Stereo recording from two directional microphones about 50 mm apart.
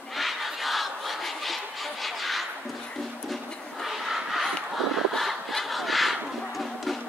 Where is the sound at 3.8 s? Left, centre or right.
Centre.